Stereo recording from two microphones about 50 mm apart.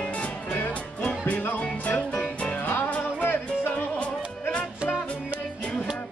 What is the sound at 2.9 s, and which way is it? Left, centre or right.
Music, left.